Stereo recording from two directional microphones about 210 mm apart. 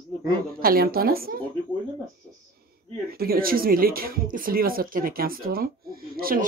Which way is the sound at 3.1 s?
45° right (ahead or behind).